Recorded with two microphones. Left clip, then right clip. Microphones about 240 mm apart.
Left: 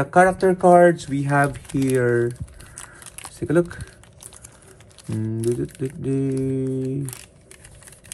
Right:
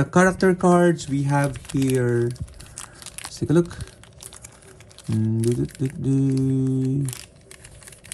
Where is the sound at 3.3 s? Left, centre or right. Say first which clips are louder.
Left 1 dB; right.